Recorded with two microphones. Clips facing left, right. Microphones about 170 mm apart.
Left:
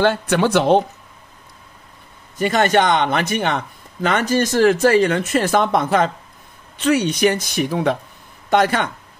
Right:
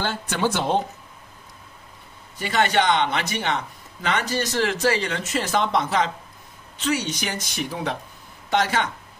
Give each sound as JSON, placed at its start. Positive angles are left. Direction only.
{"t": 0.0, "sound": "speech", "side_deg": 60}
{"t": 2.3, "sound": "speech", "side_deg": 50}